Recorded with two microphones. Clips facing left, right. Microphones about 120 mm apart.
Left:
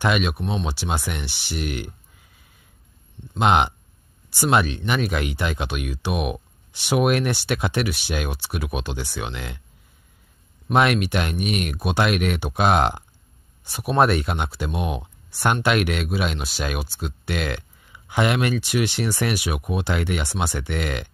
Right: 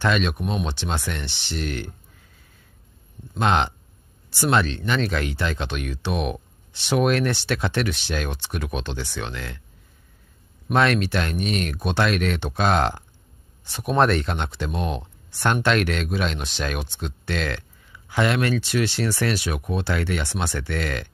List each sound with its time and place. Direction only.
0.0 s speech: 10° left (ahead or behind)
0.4 s speech: 10° right (ahead or behind)
0.7 s speech: 10° left (ahead or behind)
3.3 s speech: 15° left (ahead or behind)
10.7 s speech: 15° left (ahead or behind)